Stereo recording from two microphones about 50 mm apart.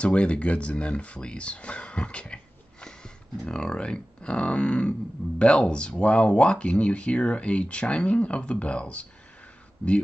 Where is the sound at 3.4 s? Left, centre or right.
Centre.